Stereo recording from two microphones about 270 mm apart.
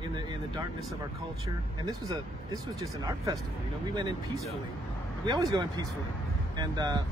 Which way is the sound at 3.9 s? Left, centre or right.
Centre.